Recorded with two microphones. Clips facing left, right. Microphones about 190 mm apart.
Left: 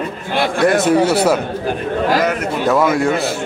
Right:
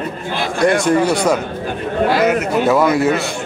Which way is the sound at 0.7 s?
5° left (ahead or behind).